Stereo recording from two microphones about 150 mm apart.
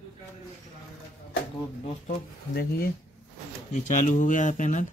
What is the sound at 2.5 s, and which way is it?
Speech, 90° left.